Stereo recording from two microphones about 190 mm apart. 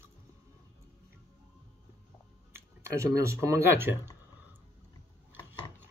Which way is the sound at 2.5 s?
15° right (ahead or behind).